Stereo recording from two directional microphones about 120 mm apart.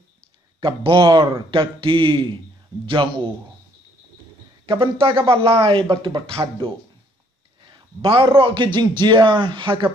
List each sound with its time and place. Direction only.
0.6 s speech: 45° right (ahead or behind)
4.6 s a man's voice: 45° right (ahead or behind)